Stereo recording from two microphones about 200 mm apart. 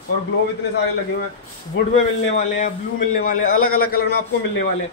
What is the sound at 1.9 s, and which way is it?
A man's voice, 35° left (ahead or behind).